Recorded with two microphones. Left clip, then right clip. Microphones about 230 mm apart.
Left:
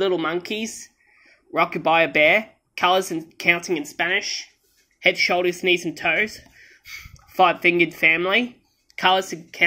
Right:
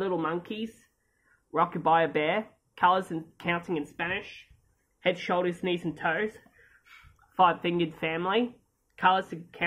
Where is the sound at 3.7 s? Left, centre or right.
Centre.